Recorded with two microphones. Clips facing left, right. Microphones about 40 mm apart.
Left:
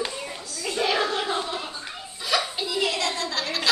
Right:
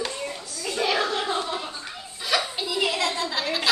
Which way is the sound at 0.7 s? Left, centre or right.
Centre.